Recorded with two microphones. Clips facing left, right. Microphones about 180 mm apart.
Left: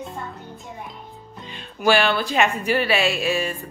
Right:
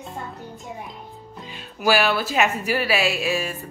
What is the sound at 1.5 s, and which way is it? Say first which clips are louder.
Speech: left 2 dB; 5° right (ahead or behind).